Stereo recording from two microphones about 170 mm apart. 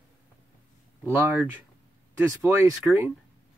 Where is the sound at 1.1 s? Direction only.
10° right (ahead or behind).